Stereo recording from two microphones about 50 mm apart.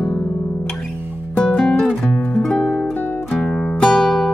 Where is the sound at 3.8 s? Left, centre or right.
Centre.